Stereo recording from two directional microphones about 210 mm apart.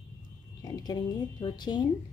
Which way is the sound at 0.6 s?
20° left (ahead or behind).